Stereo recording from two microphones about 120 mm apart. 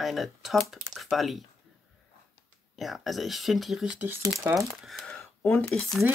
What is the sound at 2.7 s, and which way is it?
Speech, centre (ahead or behind).